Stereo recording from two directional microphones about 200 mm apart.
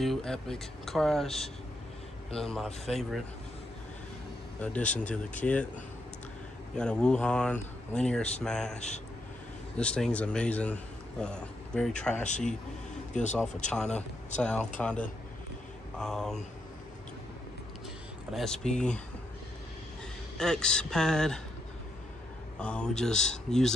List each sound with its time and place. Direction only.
0.0 s speech: centre (ahead or behind)
4.6 s speech: 5° left (ahead or behind)
6.8 s speech: 5° left (ahead or behind)
8.7 s speech: 35° left (ahead or behind)
9.8 s speech: 5° left (ahead or behind)
13.1 s speech: 35° left (ahead or behind)
13.7 s speech: 5° left (ahead or behind)
18.3 s speech: centre (ahead or behind)
20.3 s speech: 5° left (ahead or behind)
22.6 s speech: 5° left (ahead or behind)